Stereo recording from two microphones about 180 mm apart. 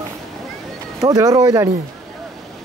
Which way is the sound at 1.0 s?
20° right (ahead or behind).